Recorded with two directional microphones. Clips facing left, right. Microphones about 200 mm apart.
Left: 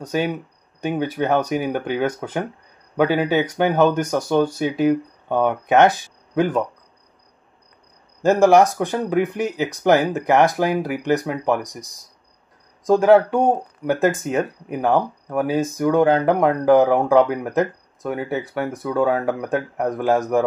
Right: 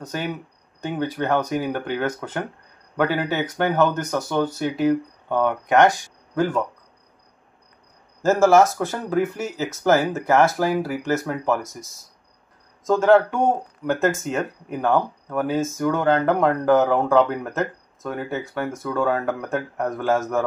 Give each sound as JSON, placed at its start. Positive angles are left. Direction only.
{"t": 0.0, "sound": "speech", "side_deg": 15}
{"t": 8.2, "sound": "speech", "side_deg": 15}